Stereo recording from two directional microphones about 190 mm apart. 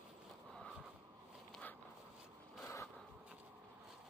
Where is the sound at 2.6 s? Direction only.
15° left (ahead or behind).